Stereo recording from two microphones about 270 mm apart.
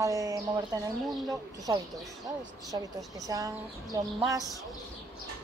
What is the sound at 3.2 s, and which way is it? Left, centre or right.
Speech, centre.